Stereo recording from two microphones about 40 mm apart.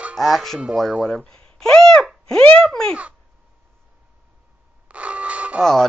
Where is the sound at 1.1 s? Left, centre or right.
Centre.